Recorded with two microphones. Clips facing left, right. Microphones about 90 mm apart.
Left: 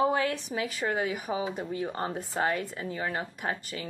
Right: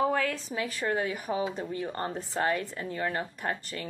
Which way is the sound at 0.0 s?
20° left (ahead or behind).